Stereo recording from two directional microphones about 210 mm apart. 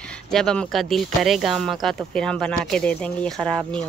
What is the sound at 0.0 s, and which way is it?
Speech, 5° left (ahead or behind).